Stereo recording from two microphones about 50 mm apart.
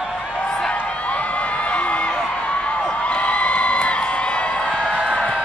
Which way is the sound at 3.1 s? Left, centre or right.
Left.